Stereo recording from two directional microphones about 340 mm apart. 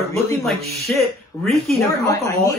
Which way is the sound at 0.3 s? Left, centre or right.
Centre.